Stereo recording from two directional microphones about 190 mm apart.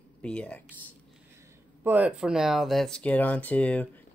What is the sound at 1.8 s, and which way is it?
Speech, 10° right (ahead or behind).